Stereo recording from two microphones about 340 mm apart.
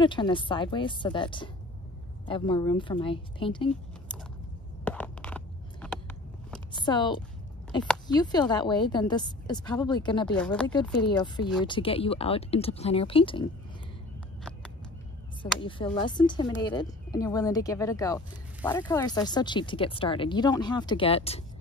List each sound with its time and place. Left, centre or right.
0.0 s a woman's voice: centre
4.8 s a sound: centre
6.7 s a woman's voice: centre
15.6 s a woman's voice: centre